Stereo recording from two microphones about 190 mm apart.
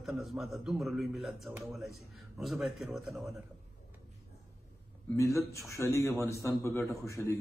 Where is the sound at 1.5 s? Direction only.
15° right (ahead or behind).